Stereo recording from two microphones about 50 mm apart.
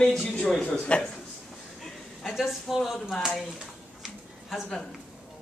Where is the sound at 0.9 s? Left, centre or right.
Left.